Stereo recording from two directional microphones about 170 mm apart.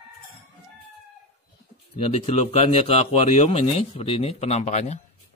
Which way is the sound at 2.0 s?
40° left (ahead or behind).